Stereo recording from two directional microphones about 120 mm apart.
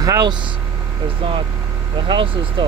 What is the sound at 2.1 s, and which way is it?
Speech, 40° right (ahead or behind).